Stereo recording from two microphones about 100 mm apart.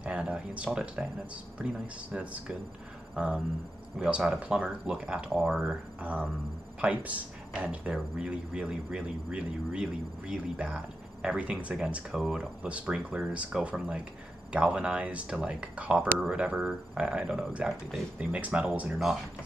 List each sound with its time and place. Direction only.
0.0 s speech: 10° right (ahead or behind)